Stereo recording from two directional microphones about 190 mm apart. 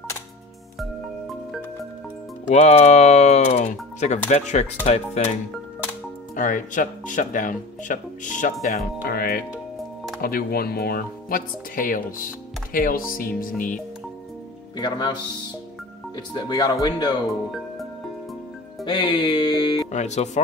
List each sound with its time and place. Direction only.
0.7 s music: centre (ahead or behind)
2.5 s speech: 35° left (ahead or behind)
6.3 s speech: 45° left (ahead or behind)
14.8 s music: 20° left (ahead or behind)
16.3 s music: 20° left (ahead or behind)
17.5 s music: centre (ahead or behind)
18.9 s music: 25° left (ahead or behind)
19.9 s speech: 35° left (ahead or behind)